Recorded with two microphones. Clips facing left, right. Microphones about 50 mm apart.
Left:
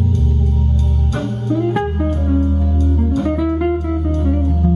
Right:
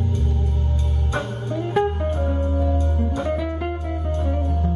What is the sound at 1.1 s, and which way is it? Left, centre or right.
Music, centre.